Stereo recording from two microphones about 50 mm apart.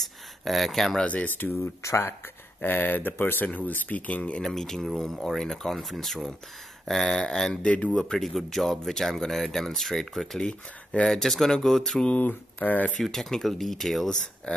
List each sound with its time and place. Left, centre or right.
0.0 s a sound: centre
1.0 s speech: left
1.6 s speech: left
2.6 s speech: left
4.4 s speech: centre
7.7 s speech: left
8.0 s speech: centre
10.4 s speech: centre
12.2 s speech: left
13.0 s speech: centre